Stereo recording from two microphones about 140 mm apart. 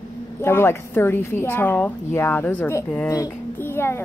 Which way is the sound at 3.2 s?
15° left (ahead or behind).